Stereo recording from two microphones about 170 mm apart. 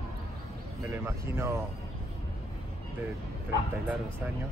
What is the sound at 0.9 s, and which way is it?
Speech, 15° right (ahead or behind).